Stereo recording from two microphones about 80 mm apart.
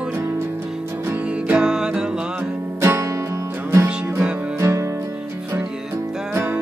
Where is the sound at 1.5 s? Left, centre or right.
Centre.